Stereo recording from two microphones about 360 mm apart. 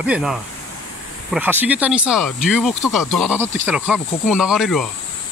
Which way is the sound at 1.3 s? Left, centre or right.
Centre.